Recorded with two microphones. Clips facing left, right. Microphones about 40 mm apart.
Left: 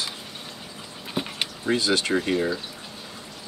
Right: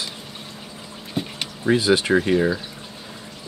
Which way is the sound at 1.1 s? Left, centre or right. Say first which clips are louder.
Right 1 dB; centre.